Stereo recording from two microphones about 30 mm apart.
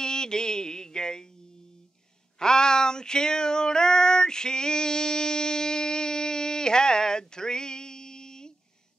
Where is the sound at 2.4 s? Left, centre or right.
Left.